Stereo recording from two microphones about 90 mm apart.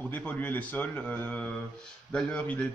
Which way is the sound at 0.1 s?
20° left (ahead or behind).